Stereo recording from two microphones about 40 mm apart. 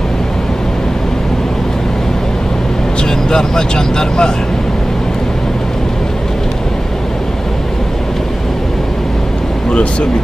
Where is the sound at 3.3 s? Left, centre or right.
Centre.